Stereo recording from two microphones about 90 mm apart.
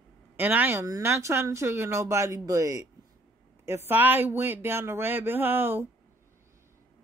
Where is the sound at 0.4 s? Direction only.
20° right (ahead or behind).